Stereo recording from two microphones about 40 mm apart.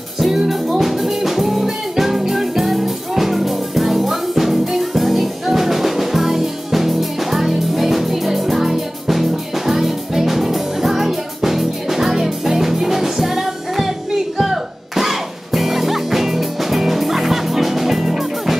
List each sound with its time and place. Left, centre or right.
0.2 s music: centre